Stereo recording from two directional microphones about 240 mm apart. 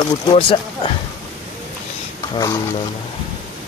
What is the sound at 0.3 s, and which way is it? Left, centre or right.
Speech, left.